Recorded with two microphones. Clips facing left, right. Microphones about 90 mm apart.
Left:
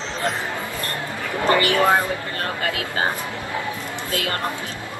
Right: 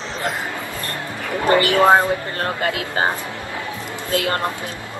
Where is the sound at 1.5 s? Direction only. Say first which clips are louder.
Right 2 dB; 20° right (ahead or behind).